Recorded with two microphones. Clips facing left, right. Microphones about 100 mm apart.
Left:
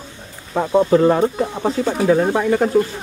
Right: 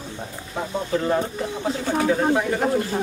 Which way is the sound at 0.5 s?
90° left.